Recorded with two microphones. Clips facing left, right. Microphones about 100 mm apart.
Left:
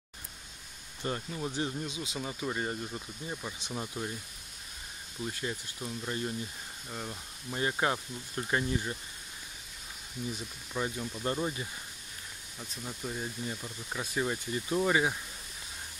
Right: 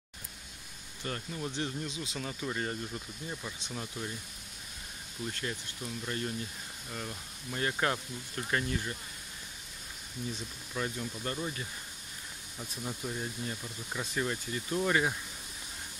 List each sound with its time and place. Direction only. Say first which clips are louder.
1.0 s speech: left 3 dB; 15° left (ahead or behind)
5.2 s speech: left 1 dB; 15° left (ahead or behind)
10.7 s speech: left 2 dB; 15° left (ahead or behind)
12.5 s speech: right 3 dB; centre (ahead or behind)